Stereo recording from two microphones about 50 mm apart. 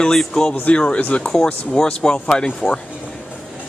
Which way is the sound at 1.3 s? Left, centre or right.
Centre.